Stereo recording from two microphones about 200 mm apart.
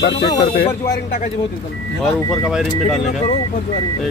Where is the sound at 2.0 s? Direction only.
Centre (ahead or behind).